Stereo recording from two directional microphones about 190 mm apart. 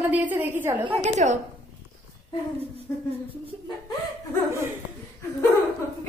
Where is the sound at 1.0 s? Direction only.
40° right (ahead or behind).